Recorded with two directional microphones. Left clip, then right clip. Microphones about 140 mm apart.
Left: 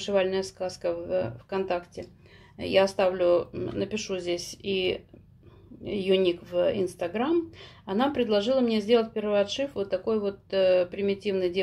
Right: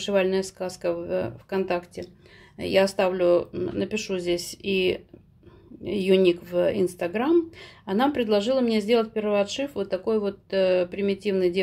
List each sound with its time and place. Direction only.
0.0 s speech: 30° right (ahead or behind)